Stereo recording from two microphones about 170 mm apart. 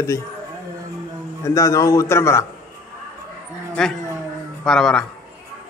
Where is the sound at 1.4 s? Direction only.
20° left (ahead or behind).